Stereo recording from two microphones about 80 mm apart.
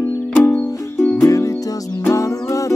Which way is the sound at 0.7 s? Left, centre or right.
Left.